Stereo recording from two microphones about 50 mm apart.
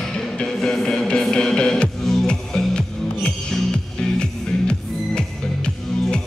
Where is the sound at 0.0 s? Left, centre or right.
Centre.